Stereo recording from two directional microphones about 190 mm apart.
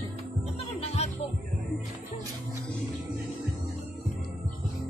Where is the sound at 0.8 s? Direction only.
30° left (ahead or behind).